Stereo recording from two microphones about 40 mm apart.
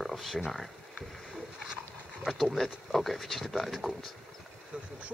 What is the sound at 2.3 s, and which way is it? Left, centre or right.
Speech, centre.